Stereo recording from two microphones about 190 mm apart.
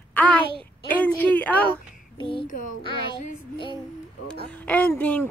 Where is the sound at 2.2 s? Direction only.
25° left (ahead or behind).